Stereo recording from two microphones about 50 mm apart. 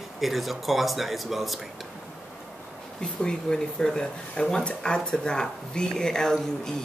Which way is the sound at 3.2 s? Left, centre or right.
Centre.